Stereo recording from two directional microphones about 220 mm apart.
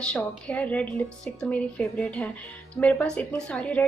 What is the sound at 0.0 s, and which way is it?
A woman's voice, 5° left (ahead or behind).